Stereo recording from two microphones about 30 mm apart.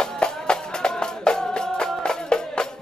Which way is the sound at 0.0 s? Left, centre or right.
Left.